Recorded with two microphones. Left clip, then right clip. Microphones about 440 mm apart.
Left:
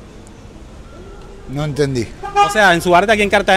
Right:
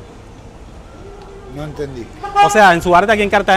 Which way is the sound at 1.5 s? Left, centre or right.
Left.